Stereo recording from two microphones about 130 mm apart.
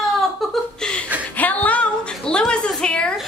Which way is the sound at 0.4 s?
Centre (ahead or behind).